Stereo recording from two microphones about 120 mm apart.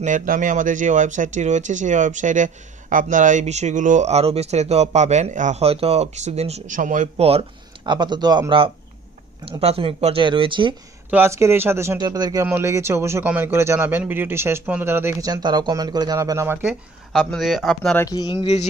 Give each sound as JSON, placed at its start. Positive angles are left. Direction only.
{"t": 0.0, "sound": "speech", "side_deg": -90}
{"t": 5.7, "sound": "speech", "side_deg": -55}
{"t": 7.8, "sound": "speech", "side_deg": -40}
{"t": 11.1, "sound": "a man's voice", "side_deg": -20}
{"t": 12.0, "sound": "a man's voice", "side_deg": -30}
{"t": 15.2, "sound": "speech", "side_deg": -35}
{"t": 16.6, "sound": "speech", "side_deg": 0}
{"t": 18.1, "sound": "speech", "side_deg": 40}